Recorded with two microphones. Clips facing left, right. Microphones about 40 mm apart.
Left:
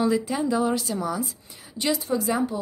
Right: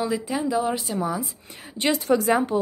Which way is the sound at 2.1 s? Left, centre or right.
Right.